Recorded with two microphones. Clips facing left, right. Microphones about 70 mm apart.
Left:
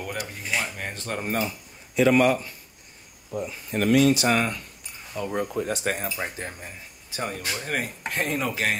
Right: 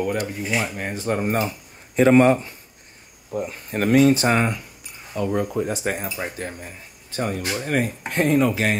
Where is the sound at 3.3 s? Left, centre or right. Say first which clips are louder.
Right 2 dB; right.